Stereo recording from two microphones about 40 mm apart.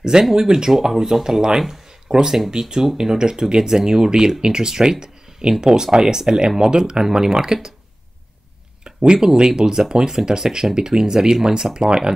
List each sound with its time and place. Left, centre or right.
0.0 s speech: centre
8.8 s speech: centre